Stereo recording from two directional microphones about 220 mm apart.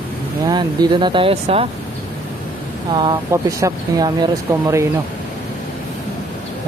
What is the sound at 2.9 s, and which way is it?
Speech, 20° right (ahead or behind).